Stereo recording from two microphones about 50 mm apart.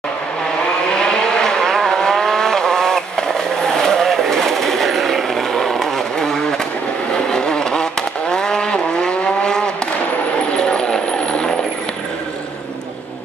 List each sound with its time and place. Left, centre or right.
0.9 s vehicle: centre
10.6 s vehicle: centre